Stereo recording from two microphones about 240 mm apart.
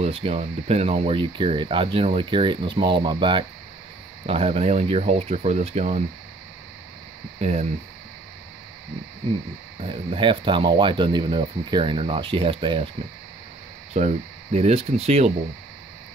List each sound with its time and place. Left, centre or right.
0.0 s speech: right
7.3 s speech: right
9.8 s speech: right
13.9 s speech: right